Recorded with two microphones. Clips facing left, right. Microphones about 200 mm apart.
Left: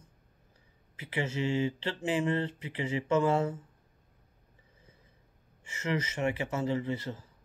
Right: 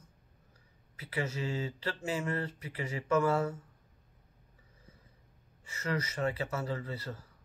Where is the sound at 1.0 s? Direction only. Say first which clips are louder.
Left 3 dB; 25° left (ahead or behind).